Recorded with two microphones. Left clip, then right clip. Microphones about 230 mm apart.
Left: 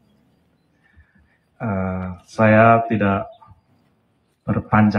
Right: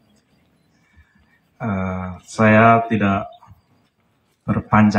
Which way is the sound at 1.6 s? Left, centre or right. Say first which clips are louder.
Even; right.